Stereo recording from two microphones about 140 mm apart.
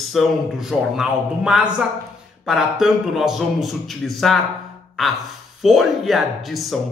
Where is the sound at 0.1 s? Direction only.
Centre (ahead or behind).